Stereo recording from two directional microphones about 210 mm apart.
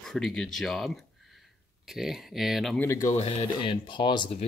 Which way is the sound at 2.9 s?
15° left (ahead or behind).